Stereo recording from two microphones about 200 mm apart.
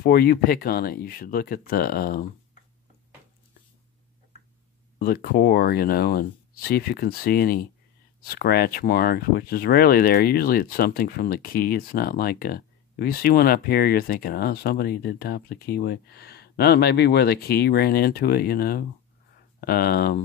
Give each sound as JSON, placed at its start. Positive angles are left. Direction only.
{"t": 0.0, "sound": "speech", "side_deg": 50}
{"t": 4.9, "sound": "speech", "side_deg": 50}